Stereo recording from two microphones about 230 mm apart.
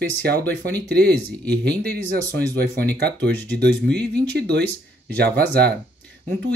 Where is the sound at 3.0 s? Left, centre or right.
Right.